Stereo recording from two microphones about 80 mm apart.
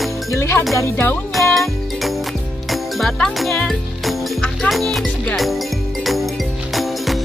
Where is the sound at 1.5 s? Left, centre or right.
Centre.